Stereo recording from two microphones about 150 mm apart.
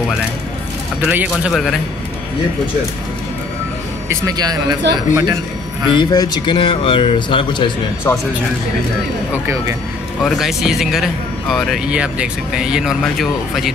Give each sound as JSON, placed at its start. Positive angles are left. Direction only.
{"t": 1.0, "sound": "speech", "side_deg": -5}
{"t": 4.1, "sound": "speech", "side_deg": -20}
{"t": 5.9, "sound": "speech", "side_deg": 30}
{"t": 10.2, "sound": "speech", "side_deg": 0}